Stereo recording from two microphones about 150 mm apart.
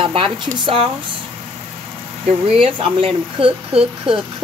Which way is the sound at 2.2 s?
40° right (ahead or behind).